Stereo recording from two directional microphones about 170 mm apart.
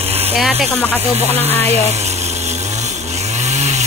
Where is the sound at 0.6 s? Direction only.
Centre (ahead or behind).